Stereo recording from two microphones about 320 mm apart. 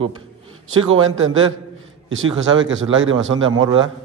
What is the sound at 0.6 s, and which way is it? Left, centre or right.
A man's voice, right.